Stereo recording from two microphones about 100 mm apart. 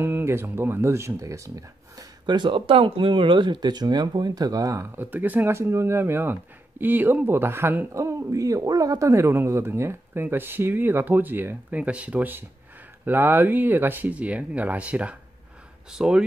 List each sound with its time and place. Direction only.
0.0 s speech: 25° right (ahead or behind)
4.9 s speech: 20° right (ahead or behind)